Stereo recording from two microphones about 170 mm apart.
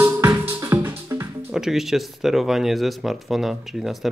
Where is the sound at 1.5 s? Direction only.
Centre (ahead or behind).